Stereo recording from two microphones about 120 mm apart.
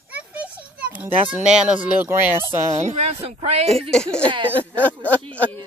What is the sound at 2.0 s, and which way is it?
Speech, 20° right (ahead or behind).